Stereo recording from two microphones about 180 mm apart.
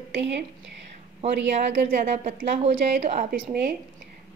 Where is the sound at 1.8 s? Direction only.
35° right (ahead or behind).